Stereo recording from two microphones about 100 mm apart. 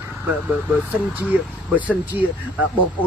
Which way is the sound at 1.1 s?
15° right (ahead or behind).